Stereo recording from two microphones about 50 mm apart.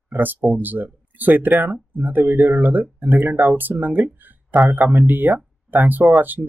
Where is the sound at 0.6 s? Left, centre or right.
Right.